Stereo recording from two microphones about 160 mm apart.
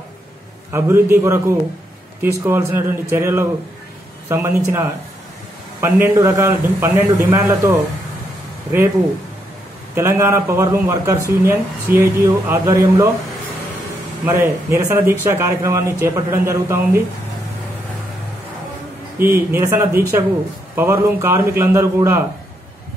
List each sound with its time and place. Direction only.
0.7 s a man's voice: 15° right (ahead or behind)
9.9 s speech: 15° right (ahead or behind)
14.2 s speech: 15° right (ahead or behind)
19.1 s speech: 15° right (ahead or behind)